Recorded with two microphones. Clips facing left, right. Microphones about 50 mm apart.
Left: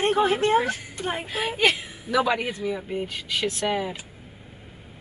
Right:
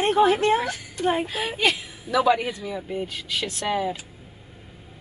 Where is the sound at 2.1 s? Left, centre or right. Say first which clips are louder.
Right 3 dB; centre.